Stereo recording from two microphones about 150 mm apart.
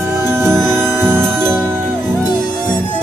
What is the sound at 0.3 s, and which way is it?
Music, 15° right (ahead or behind).